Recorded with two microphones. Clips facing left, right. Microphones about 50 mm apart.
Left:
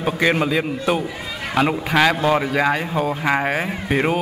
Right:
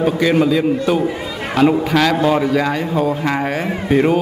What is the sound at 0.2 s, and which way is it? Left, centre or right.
A man's voice, centre.